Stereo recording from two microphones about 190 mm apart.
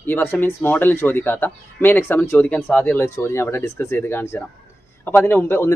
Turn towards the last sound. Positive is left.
turn(degrees=15)  # may be behind; listen again after turning